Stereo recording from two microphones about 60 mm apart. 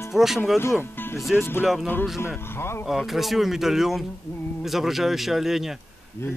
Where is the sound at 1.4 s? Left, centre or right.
Left.